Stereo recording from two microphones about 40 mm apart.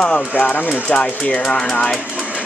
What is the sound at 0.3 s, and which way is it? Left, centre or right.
Speech, left.